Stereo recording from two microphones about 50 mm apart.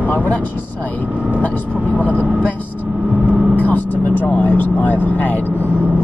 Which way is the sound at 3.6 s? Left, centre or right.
Left.